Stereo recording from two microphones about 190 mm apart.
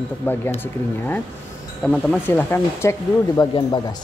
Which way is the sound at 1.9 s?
5° left (ahead or behind).